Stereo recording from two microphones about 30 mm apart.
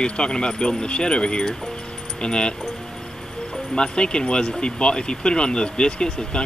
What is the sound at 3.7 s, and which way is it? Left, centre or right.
Speech, left.